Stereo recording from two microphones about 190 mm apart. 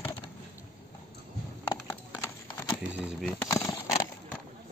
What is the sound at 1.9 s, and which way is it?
Clip-clop, 15° left (ahead or behind).